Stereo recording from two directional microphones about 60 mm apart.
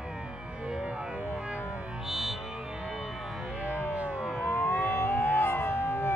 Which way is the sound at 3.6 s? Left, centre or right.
Left.